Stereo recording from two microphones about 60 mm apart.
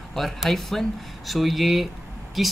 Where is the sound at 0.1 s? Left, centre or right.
Centre.